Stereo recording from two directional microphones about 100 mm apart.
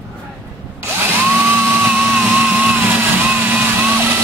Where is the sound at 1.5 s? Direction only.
15° right (ahead or behind).